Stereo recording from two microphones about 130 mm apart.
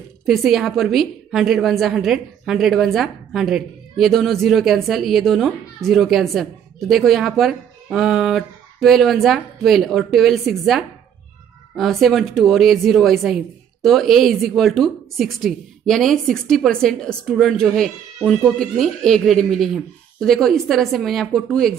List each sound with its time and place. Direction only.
0.3 s a woman's voice: centre (ahead or behind)